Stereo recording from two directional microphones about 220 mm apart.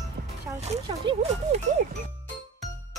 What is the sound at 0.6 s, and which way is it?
Speech, 30° right (ahead or behind).